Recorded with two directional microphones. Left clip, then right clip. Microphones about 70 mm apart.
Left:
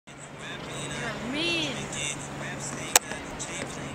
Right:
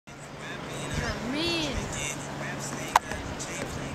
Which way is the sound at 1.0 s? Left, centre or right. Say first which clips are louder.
Left 1 dB; right.